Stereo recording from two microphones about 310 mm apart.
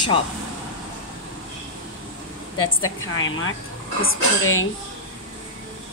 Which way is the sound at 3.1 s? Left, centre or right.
Left.